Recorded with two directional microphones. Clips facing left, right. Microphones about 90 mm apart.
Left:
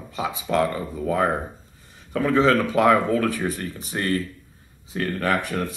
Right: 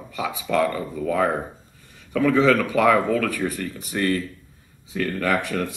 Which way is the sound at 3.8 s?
30° left (ahead or behind).